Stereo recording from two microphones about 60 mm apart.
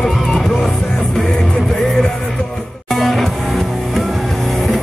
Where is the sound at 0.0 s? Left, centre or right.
Centre.